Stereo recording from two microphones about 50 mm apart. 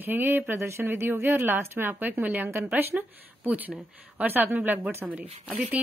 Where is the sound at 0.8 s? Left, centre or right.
Right.